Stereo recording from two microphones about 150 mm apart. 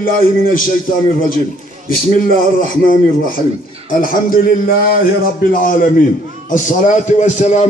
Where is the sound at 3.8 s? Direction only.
70° left (ahead or behind).